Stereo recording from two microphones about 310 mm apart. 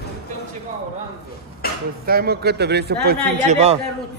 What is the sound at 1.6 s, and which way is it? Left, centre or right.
Dishes, left.